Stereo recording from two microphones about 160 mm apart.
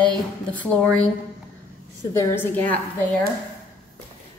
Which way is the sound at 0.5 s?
5° left (ahead or behind).